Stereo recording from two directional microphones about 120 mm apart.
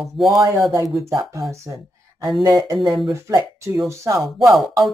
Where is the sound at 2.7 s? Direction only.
Centre (ahead or behind).